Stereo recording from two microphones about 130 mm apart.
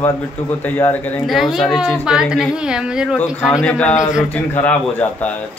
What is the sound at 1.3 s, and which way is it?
A woman's voice, centre (ahead or behind).